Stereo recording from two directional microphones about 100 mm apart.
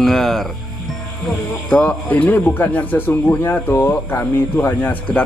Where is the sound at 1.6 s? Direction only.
15° left (ahead or behind).